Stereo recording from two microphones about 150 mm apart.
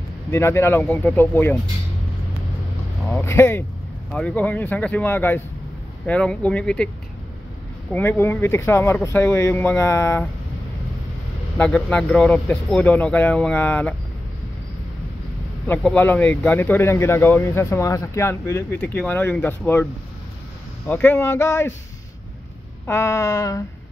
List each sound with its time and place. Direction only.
0.3 s speech: 15° left (ahead or behind)
3.1 s speech: 15° left (ahead or behind)
7.9 s speech: 15° left (ahead or behind)
11.5 s speech: 10° left (ahead or behind)
15.6 s speech: 10° left (ahead or behind)
22.8 s a sound: 20° left (ahead or behind)